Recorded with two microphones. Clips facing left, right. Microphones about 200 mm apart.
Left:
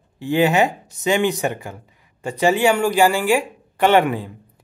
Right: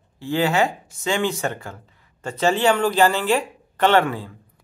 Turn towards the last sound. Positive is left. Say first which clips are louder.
# left 3 dB
turn(degrees=15)  # may be behind; listen again after turning